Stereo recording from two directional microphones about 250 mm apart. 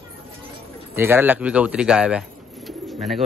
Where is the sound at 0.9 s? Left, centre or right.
Centre.